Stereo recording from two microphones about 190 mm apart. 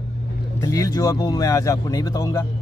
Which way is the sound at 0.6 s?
20° left (ahead or behind).